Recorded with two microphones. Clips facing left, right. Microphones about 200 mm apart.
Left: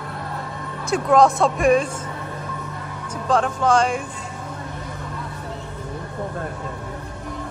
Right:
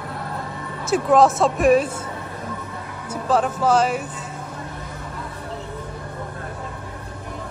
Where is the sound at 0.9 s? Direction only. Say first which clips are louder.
Even; 5° right (ahead or behind).